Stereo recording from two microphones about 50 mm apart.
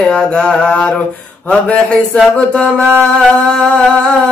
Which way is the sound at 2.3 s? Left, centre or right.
Centre.